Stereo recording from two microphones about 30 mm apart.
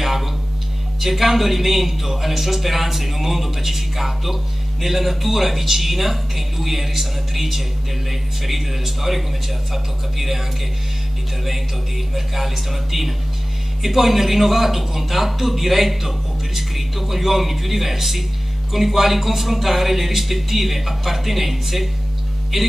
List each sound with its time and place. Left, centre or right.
0.0 s a sound: centre
1.0 s a man's voice: centre
12.1 s a man's voice: centre